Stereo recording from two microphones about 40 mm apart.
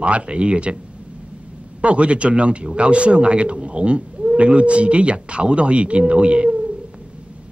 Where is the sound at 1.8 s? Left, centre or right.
Right.